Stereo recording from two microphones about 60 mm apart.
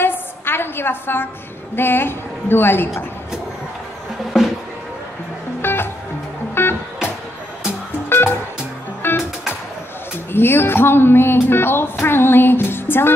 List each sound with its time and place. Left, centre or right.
0.0 s a sound: left
1.8 s speech: left
4.3 s music: centre
5.6 s music: left
9.0 s music: left
10.3 s speech: left